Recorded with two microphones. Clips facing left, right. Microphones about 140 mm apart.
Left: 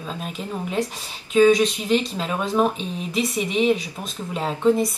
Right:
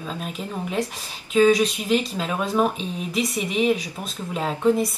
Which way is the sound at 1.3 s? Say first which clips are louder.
Left 2 dB; 5° right (ahead or behind).